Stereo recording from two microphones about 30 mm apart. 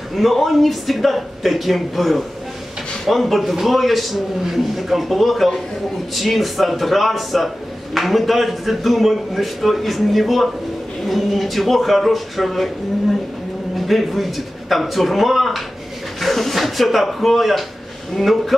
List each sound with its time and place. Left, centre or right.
0.1 s a man's voice: centre
13.7 s a man's voice: centre